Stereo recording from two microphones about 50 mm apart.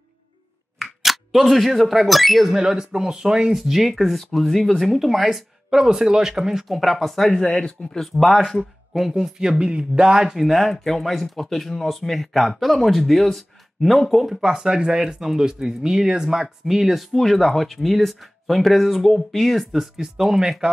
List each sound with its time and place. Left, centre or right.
0.7 s speech: centre
2.6 s speech: centre
7.4 s speech: centre
8.1 s speech: centre
9.4 s speech: centre
10.4 s speech: centre